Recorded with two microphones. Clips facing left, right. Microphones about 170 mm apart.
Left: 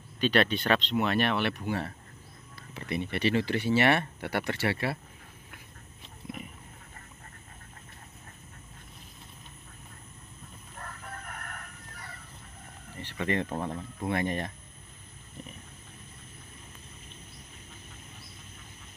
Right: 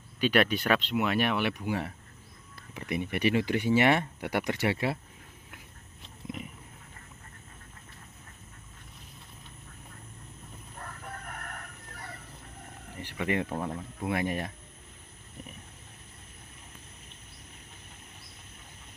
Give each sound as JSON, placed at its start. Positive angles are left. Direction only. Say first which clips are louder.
{"t": 0.2, "sound": "speech", "louder": "even", "side_deg": -10}
{"t": 12.9, "sound": "speech", "louder": "even", "side_deg": -10}